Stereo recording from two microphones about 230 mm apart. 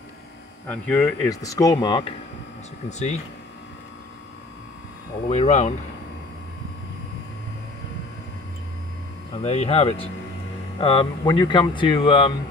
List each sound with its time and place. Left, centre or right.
0.7 s speech: centre; by 3.2 s left
5.3 s speech: left
9.4 s speech: left